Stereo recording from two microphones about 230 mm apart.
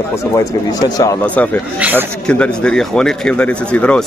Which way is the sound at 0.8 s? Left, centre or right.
Centre.